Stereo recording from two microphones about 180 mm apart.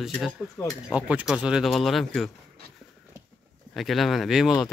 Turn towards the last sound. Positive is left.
turn(degrees=0)  # may be behind; listen again after turning